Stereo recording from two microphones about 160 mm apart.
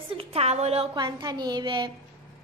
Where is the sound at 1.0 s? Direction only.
25° right (ahead or behind).